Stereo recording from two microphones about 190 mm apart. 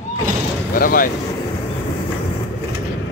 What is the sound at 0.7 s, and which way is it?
Speech, 50° left (ahead or behind).